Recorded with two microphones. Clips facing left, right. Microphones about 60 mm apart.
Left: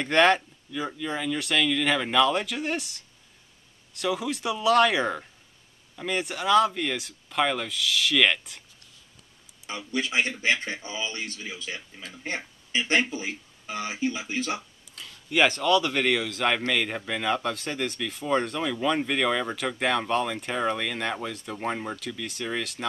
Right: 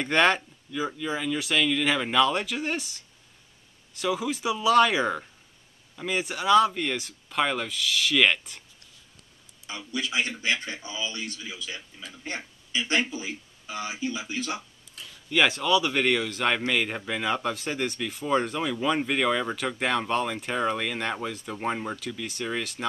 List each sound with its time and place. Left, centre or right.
0.0 s speech: centre
9.7 s speech: left
15.2 s speech: centre